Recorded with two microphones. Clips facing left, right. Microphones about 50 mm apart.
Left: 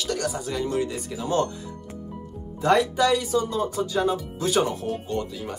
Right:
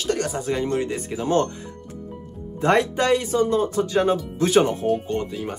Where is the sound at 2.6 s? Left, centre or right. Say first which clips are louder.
Right 1 dB; right.